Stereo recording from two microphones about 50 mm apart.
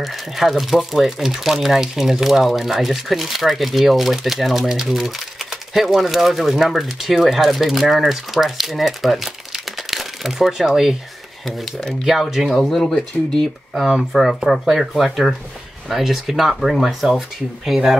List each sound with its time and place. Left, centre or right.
0.0 s speech: centre
12.0 s speech: centre
12.5 s speech: centre
13.8 s speech: centre